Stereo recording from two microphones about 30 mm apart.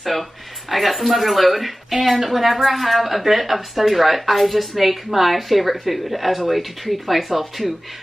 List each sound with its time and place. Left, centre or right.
0.0 s speech: centre